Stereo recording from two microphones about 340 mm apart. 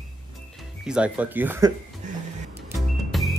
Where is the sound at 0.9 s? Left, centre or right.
Centre.